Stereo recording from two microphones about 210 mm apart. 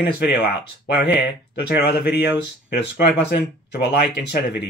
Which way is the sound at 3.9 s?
50° left (ahead or behind).